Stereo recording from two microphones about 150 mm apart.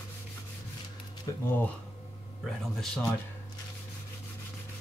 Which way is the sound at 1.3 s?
25° left (ahead or behind).